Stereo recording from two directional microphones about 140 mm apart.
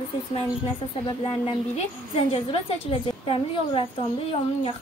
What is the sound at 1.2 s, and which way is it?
A woman's voice, 45° left (ahead or behind).